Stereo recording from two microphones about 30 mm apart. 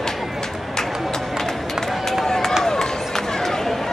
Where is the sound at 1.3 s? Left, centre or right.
Centre.